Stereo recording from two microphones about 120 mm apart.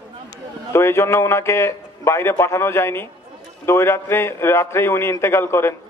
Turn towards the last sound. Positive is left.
turn(degrees=20)  # may be behind; listen again after turning